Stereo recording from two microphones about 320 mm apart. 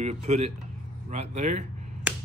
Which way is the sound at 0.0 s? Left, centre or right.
Right.